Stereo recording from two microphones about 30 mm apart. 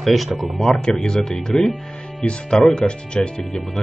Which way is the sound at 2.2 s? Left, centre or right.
Left.